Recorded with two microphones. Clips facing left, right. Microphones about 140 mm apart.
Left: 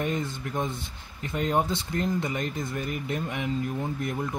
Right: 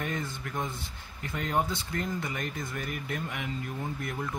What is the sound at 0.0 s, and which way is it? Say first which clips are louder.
Speech: left 5 dB; 20° left (ahead or behind).